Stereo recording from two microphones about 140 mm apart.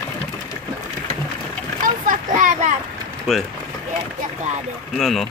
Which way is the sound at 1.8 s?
70° right (ahead or behind).